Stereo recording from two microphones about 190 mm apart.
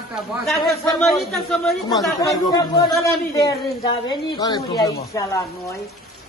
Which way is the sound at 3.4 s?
20° left (ahead or behind).